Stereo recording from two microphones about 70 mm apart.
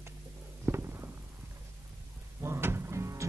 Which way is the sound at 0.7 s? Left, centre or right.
Right.